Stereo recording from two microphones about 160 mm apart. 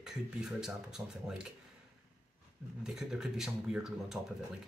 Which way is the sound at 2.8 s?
5° right (ahead or behind).